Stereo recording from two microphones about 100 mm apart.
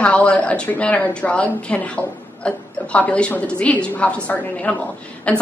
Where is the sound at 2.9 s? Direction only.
10° left (ahead or behind).